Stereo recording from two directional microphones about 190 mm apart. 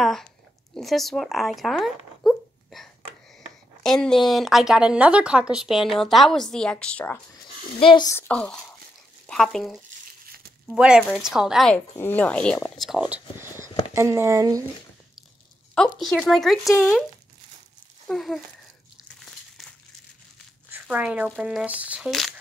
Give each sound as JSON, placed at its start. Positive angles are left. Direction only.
{"t": 0.0, "sound": "a sound", "side_deg": 0}
{"t": 0.7, "sound": "speech", "side_deg": 0}
{"t": 2.2, "sound": "a sound", "side_deg": 0}
{"t": 3.8, "sound": "speech", "side_deg": 5}
{"t": 7.8, "sound": "speech", "side_deg": 25}
{"t": 8.1, "sound": "speech", "side_deg": 10}
{"t": 16.0, "sound": "speech", "side_deg": 0}
{"t": 18.0, "sound": "speech", "side_deg": 0}
{"t": 20.7, "sound": "speech", "side_deg": -10}